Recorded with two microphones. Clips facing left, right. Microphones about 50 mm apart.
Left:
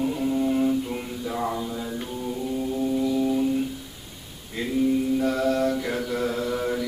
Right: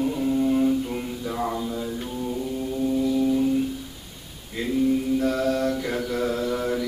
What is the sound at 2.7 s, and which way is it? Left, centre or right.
Music, centre.